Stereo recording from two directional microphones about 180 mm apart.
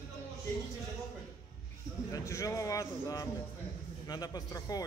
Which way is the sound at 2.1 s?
20° left (ahead or behind).